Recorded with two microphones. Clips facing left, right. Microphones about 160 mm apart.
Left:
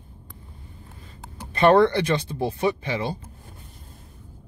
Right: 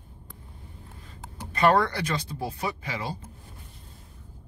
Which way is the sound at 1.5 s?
25° left (ahead or behind).